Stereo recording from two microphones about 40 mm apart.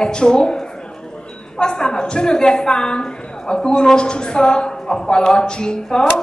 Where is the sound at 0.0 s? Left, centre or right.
Left.